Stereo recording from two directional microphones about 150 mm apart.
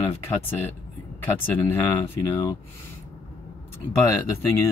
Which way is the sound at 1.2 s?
15° left (ahead or behind).